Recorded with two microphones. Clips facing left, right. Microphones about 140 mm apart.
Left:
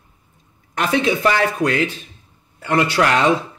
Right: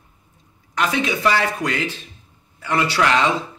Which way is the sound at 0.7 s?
50° left (ahead or behind).